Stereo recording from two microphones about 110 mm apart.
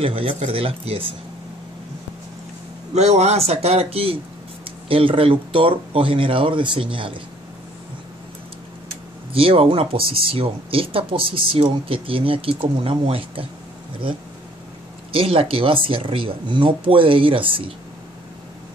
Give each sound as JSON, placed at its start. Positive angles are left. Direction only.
{"t": 0.0, "sound": "speech", "side_deg": -60}
{"t": 2.9, "sound": "a man's voice", "side_deg": -85}
{"t": 9.3, "sound": "speech", "side_deg": -60}
{"t": 15.1, "sound": "speech", "side_deg": -55}